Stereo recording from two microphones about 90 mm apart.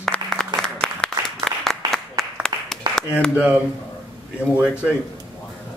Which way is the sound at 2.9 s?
50° right (ahead or behind).